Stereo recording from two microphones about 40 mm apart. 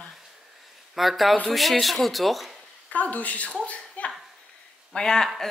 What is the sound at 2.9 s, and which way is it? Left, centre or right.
Speech, left.